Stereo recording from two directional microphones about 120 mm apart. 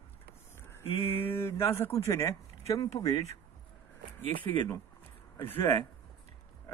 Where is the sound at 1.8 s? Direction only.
20° left (ahead or behind).